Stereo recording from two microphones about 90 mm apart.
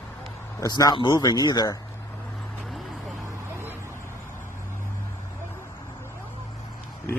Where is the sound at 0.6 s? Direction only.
45° left (ahead or behind).